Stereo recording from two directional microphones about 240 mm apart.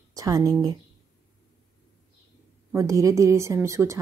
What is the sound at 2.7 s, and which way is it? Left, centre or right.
Speech, centre.